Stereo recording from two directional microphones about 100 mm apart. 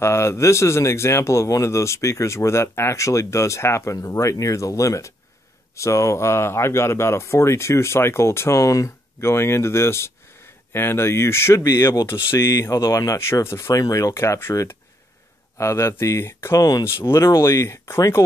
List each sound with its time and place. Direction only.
0.0 s speech: 25° left (ahead or behind)